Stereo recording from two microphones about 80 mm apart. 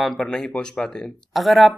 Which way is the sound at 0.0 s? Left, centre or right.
Centre.